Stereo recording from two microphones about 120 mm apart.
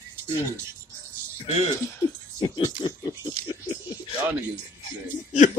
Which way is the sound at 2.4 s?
35° left (ahead or behind).